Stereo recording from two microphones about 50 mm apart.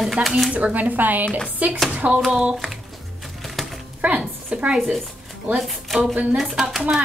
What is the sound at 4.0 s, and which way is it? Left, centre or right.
Speech, right.